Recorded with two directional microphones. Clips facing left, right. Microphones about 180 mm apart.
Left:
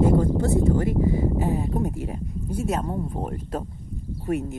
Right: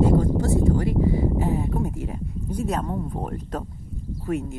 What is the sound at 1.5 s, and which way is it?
Speech, 35° left (ahead or behind).